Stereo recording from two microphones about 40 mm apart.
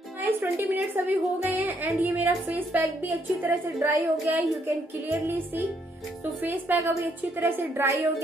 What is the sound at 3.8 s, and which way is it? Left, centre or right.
Speech, right.